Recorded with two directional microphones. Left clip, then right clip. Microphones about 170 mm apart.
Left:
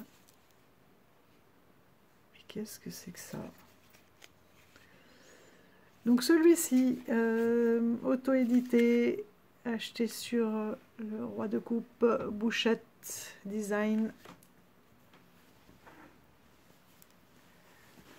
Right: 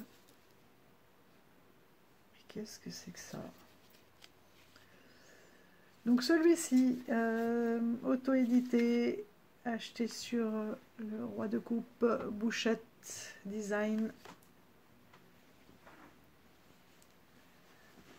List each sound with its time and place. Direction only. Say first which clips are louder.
2.3 s speech: left 4 dB; 20° left (ahead or behind)
5.2 s a sound: left 4 dB; 30° left (ahead or behind)
6.0 s speech: left 4 dB; 30° left (ahead or behind)